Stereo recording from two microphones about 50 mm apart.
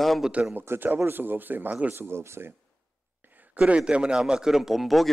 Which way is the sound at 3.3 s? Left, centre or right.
Right.